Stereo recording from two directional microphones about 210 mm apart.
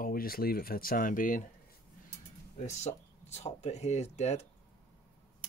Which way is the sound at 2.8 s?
30° left (ahead or behind).